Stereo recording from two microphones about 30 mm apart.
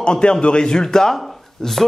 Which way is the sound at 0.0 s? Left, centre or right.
Left.